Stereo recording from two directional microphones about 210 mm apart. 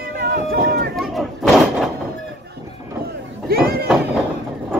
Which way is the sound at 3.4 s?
45° right (ahead or behind).